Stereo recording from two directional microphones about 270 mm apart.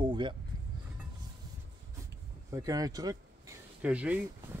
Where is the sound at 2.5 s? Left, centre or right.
Centre.